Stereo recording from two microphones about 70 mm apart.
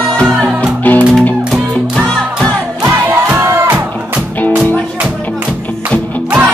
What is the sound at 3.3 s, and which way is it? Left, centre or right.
Music, right.